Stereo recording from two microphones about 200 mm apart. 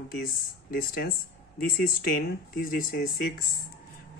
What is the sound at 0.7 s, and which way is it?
Speech, 45° left (ahead or behind).